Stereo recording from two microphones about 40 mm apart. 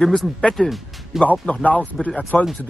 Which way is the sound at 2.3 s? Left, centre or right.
Left.